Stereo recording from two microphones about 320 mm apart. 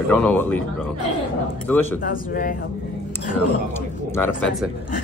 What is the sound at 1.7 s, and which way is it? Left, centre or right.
Speech, centre.